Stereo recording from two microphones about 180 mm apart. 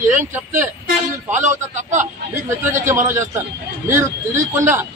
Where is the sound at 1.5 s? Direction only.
40° right (ahead or behind).